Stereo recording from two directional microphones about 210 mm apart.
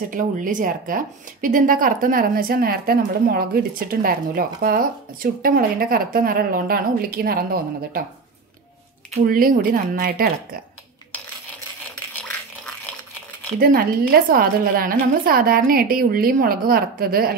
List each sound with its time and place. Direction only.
0.1 s a woman's voice: 40° right (ahead or behind)
9.2 s a woman's voice: 45° right (ahead or behind)
12.1 s a sound: 5° left (ahead or behind)
13.6 s a woman's voice: 45° right (ahead or behind)